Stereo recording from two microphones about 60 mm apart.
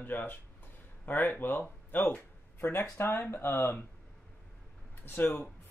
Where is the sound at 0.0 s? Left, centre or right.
Left.